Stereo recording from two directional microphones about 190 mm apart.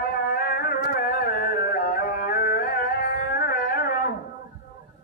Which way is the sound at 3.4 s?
50° left (ahead or behind).